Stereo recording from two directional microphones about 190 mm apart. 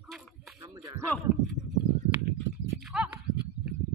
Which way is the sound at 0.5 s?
20° right (ahead or behind).